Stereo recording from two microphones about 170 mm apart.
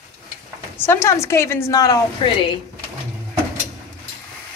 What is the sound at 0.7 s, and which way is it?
Speech, 15° left (ahead or behind).